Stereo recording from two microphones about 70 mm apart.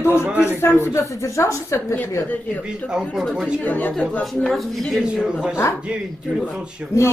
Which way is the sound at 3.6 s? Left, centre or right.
Left.